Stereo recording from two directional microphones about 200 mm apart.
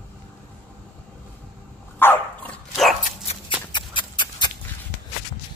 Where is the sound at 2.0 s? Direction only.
10° left (ahead or behind).